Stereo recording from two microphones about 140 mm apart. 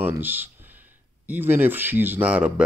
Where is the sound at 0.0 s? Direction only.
15° right (ahead or behind).